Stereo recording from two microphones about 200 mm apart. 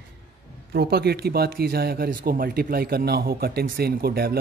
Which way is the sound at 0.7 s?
55° right (ahead or behind).